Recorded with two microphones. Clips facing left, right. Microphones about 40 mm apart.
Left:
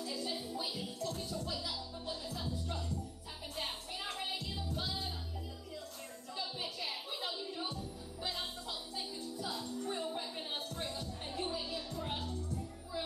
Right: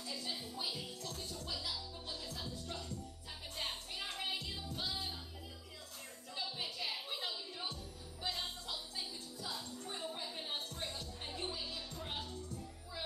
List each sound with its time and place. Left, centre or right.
0.0 s music: centre
2.2 s music: centre
6.3 s a sound: centre
8.2 s music: centre